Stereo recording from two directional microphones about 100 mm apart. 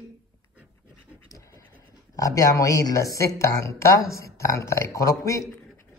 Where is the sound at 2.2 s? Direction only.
35° left (ahead or behind).